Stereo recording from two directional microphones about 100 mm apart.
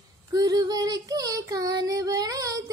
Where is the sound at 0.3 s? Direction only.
40° right (ahead or behind).